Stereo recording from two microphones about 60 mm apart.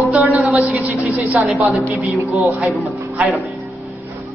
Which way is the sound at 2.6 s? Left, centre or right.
Centre.